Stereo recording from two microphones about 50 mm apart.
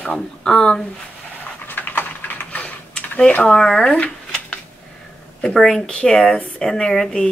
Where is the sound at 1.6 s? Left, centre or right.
Left.